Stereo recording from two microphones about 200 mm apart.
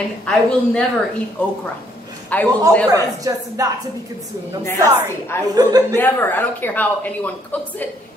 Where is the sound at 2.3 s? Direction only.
5° left (ahead or behind).